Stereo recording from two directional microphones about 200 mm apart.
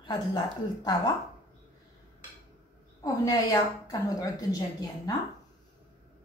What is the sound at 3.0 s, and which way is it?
A woman's voice, 15° left (ahead or behind).